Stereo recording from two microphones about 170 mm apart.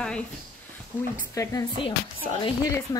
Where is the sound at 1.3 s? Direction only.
25° left (ahead or behind).